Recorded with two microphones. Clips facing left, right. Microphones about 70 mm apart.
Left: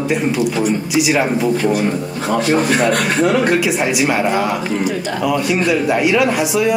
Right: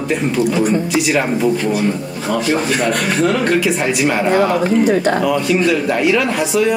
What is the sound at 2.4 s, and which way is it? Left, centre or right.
Speech, left.